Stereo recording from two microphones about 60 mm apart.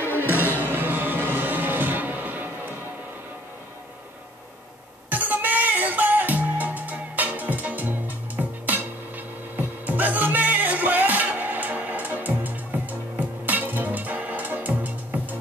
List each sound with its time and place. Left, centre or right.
0.2 s music: right
5.1 s music: right